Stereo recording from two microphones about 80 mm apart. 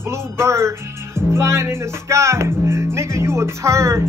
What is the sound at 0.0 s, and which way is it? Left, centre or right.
Speech, right.